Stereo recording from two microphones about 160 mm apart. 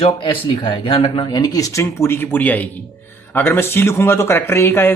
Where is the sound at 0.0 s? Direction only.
30° left (ahead or behind).